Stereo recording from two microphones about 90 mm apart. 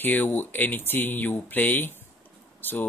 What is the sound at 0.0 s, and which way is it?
Speech, 20° left (ahead or behind).